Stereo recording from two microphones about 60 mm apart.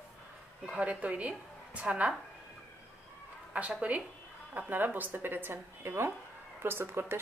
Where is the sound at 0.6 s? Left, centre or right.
Right.